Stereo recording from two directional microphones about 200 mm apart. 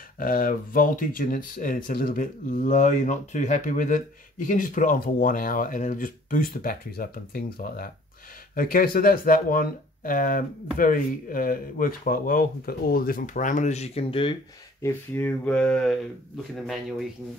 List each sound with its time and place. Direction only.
0.2 s speech: 45° left (ahead or behind); by 14.3 s 30° left (ahead or behind)
14.8 s speech: 10° left (ahead or behind)